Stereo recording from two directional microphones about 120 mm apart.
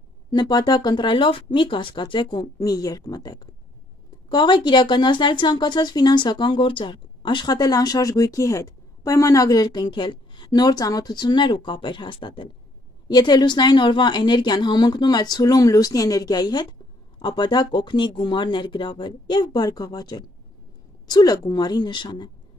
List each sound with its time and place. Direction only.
0.3 s a woman's voice: 35° left (ahead or behind)